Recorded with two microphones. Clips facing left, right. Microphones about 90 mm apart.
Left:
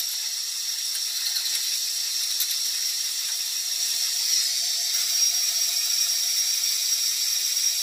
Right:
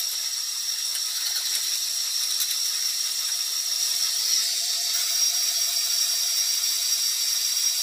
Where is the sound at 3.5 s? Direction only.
45° right (ahead or behind).